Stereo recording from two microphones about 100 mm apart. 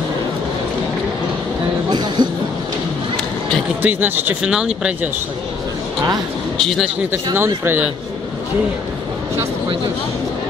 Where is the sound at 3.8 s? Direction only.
20° right (ahead or behind).